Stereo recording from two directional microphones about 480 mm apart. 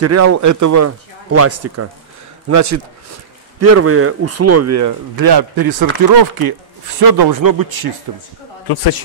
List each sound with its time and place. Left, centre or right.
0.0 s speech: right
8.6 s speech: left